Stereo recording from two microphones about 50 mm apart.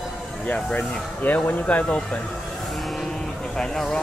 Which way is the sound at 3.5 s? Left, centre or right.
Centre.